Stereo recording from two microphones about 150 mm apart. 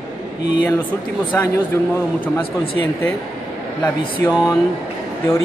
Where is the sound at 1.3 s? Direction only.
15° left (ahead or behind).